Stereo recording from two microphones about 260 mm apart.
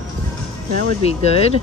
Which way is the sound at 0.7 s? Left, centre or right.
Right.